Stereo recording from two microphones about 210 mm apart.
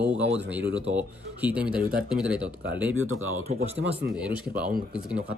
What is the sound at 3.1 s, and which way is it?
Speech, 75° right (ahead or behind).